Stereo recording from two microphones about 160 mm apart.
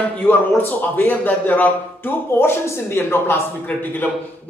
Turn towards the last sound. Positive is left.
turn(degrees=10)  # may be behind; listen again after turning